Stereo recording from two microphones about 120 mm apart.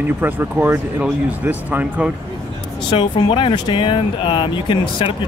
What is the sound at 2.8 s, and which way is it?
Speech, 45° left (ahead or behind).